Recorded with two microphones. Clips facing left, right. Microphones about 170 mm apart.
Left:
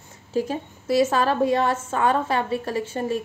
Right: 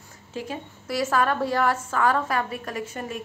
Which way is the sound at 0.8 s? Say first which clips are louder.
Left 4 dB; 25° left (ahead or behind).